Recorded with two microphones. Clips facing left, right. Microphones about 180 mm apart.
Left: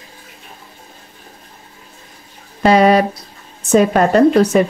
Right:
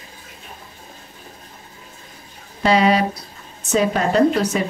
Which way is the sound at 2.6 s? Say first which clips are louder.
Left 5 dB; 50° left (ahead or behind).